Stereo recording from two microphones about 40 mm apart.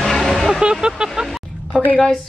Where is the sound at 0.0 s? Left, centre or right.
Centre.